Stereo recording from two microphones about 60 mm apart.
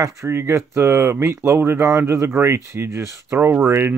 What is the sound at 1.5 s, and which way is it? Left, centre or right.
Speech, right.